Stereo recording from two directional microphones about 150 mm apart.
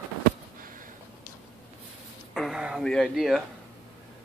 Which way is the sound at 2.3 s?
Centre (ahead or behind).